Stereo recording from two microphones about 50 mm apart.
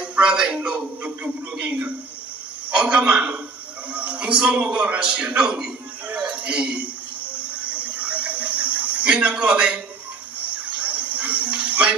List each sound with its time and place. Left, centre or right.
0.0 s a man's voice: right
6.0 s a sound: right
9.3 s a man's voice: right
10.4 s music: right